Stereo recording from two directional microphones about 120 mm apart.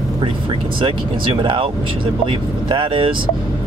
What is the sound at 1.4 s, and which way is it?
Speech, 45° right (ahead or behind).